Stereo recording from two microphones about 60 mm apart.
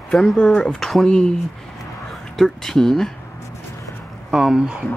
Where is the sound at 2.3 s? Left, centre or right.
Centre.